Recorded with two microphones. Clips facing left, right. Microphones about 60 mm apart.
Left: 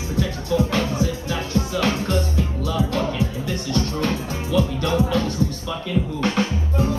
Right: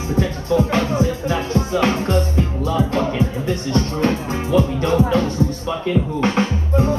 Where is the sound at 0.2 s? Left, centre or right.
Right.